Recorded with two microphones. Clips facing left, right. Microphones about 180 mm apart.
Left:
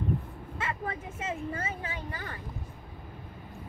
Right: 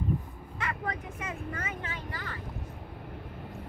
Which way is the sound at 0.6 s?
25° left (ahead or behind).